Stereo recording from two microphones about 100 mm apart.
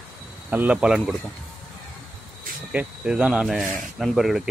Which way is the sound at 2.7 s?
10° right (ahead or behind).